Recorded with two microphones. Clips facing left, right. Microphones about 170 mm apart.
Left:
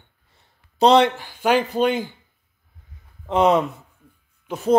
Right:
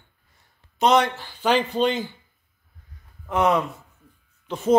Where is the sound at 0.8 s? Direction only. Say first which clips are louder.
Left 4 dB; 30° left (ahead or behind).